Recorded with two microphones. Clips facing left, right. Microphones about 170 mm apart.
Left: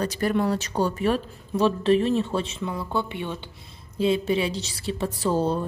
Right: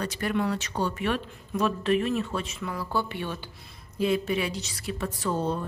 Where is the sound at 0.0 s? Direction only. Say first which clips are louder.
Left 4 dB; 40° left (ahead or behind).